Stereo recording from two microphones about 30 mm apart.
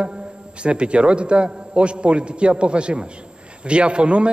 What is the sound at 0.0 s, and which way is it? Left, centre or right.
A man's voice, right.